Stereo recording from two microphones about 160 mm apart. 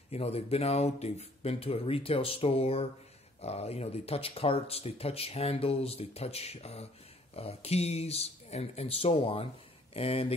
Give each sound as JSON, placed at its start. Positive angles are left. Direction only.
{"t": 0.1, "sound": "speech", "side_deg": 40}